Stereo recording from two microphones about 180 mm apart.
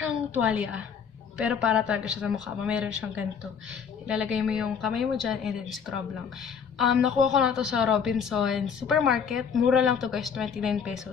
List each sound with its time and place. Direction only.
0.3 s a woman's voice: 5° right (ahead or behind)